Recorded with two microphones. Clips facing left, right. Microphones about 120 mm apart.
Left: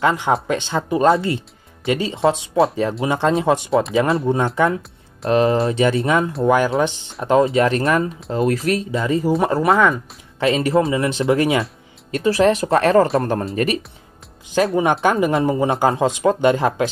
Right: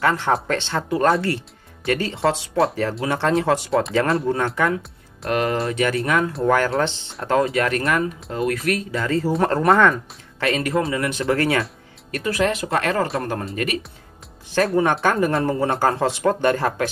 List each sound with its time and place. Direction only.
0.0 s speech: 15° left (ahead or behind)
3.7 s speech: centre (ahead or behind)
4.3 s speech: 15° left (ahead or behind)
9.3 s speech: 5° left (ahead or behind)
10.4 s speech: 25° left (ahead or behind)
12.1 s speech: 30° left (ahead or behind)
14.8 s speech: 15° left (ahead or behind)